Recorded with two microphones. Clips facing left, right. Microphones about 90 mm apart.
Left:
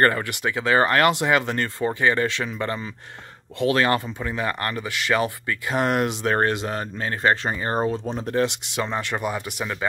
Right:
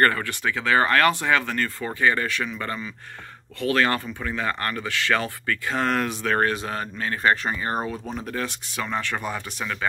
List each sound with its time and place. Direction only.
0.0 s speech: 20° left (ahead or behind); by 2.9 s 35° left (ahead or behind)
3.5 s speech: 20° left (ahead or behind)